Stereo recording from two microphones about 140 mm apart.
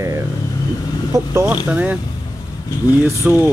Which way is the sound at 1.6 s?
10° right (ahead or behind).